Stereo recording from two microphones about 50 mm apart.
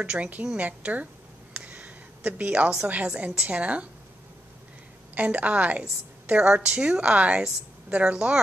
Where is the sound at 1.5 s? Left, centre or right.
Right.